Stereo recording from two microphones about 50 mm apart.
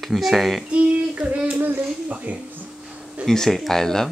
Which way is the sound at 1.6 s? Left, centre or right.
Right.